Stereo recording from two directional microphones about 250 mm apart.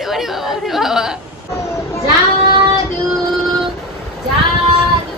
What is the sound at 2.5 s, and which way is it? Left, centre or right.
Child singing, centre.